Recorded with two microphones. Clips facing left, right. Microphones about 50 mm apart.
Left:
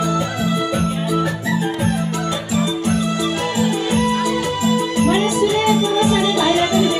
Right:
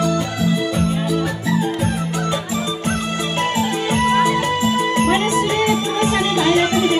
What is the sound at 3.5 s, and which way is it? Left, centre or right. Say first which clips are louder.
Music: left 1 dB; right.